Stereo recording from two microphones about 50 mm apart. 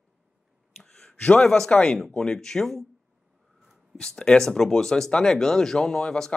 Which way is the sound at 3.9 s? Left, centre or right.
Centre.